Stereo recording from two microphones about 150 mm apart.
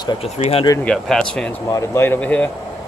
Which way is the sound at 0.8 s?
5° left (ahead or behind).